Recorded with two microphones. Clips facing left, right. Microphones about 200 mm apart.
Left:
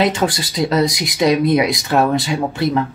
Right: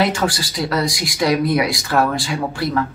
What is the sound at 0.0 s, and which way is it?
Speech, 20° left (ahead or behind).